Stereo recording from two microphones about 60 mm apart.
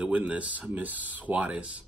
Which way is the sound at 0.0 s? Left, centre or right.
Right.